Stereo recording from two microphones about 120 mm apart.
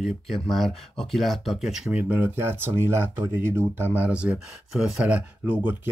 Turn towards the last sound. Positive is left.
turn(degrees=-15)  # may be behind; listen again after turning